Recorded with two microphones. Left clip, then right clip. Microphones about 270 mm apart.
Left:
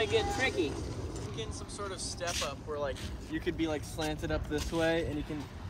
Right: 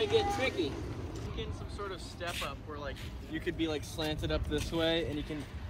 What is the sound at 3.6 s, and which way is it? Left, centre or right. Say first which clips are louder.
Speech: right 1 dB; centre.